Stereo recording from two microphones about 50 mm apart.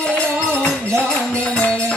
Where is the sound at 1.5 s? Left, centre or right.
Left.